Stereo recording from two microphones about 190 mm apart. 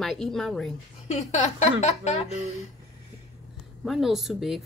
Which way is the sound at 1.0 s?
35° left (ahead or behind).